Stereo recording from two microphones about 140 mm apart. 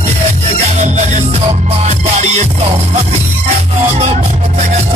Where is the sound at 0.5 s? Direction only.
55° right (ahead or behind).